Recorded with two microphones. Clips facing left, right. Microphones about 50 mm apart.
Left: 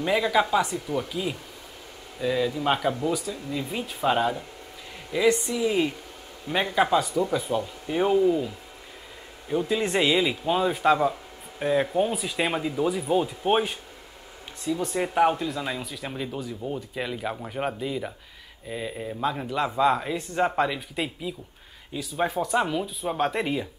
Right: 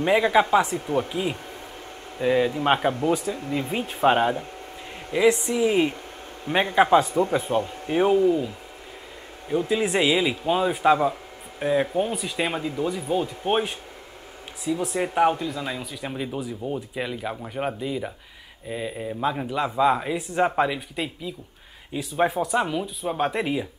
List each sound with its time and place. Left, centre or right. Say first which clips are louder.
0.0 s speech: right 3 dB; right
7.9 s speech: right 3 dB; centre
9.7 s speech: right 2 dB; centre
14.6 s speech: right 1 dB; centre
21.9 s speech: right 3 dB; centre